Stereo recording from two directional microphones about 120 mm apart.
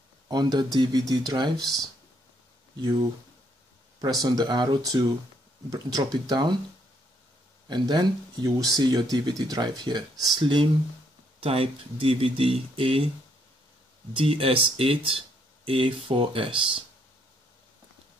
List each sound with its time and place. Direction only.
0.3 s speech: 35° right (ahead or behind)
4.2 s speech: 35° right (ahead or behind)
7.6 s speech: 40° right (ahead or behind)
11.4 s speech: 50° right (ahead or behind)
14.1 s speech: 50° right (ahead or behind)